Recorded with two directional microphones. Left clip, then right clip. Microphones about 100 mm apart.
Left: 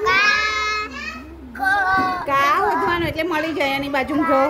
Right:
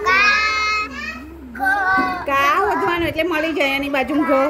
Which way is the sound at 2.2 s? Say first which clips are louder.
Right 1 dB; 25° right (ahead or behind).